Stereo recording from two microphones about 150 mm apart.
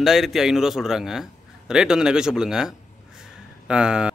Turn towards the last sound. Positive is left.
turn(degrees=-5)  # may be behind; listen again after turning